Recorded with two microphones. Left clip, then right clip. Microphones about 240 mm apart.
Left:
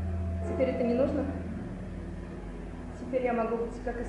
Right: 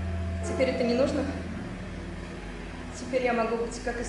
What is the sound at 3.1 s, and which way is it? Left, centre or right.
Speech, centre.